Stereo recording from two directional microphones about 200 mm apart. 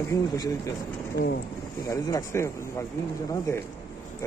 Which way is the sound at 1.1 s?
50° left (ahead or behind).